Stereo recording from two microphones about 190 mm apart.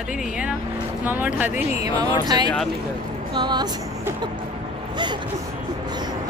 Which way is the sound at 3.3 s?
25° right (ahead or behind).